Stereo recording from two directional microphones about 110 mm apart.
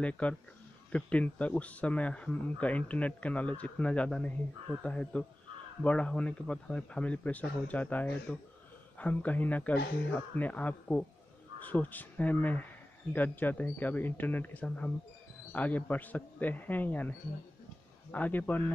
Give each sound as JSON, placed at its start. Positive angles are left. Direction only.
{"t": 0.0, "sound": "speech", "side_deg": 10}
{"t": 18.1, "sound": "speech", "side_deg": 15}